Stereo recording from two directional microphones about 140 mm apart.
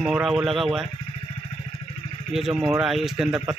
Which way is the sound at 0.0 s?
Centre (ahead or behind).